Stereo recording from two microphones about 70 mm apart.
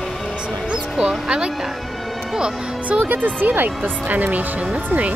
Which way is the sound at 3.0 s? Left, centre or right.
Right.